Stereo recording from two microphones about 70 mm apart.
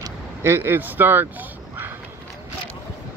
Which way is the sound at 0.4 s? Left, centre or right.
Right.